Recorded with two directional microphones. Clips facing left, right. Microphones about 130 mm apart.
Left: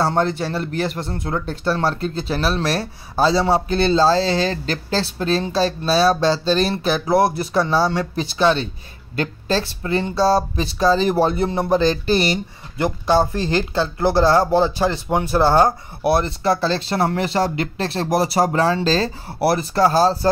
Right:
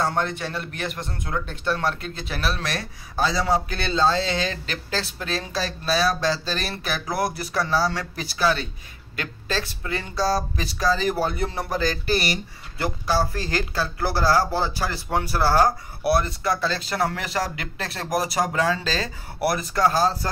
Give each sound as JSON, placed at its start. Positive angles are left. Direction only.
{"t": 0.0, "sound": "speech", "side_deg": 30}